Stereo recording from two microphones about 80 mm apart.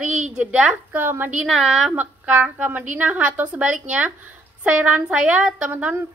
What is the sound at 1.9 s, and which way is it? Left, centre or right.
A woman's voice, centre.